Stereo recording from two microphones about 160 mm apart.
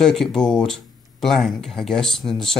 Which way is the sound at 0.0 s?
Centre (ahead or behind).